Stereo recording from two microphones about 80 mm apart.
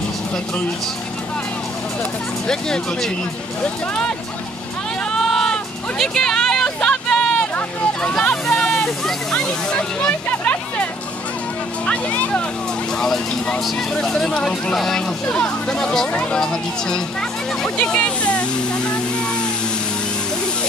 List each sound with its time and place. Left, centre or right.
2.4 s speech: centre
5.1 s a sound: centre
11.8 s speech: centre
13.0 s speech: centre
17.7 s speech: centre